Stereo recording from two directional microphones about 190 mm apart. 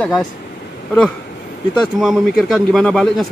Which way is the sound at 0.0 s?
10° left (ahead or behind).